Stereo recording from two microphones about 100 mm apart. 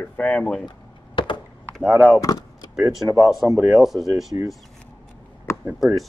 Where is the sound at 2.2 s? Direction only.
40° left (ahead or behind).